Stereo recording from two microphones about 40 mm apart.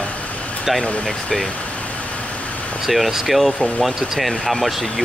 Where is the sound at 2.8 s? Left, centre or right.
Centre.